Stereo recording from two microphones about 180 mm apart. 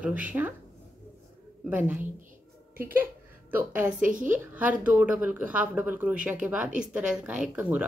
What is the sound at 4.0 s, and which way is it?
Speech, 45° right (ahead or behind).